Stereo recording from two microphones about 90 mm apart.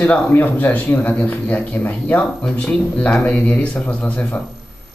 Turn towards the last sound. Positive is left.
turn(degrees=15)  # may be behind; listen again after turning